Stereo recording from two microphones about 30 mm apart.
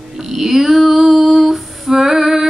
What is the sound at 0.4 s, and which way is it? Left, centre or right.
Female singing, centre.